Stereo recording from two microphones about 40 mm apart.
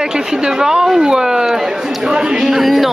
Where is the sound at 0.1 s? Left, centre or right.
Centre.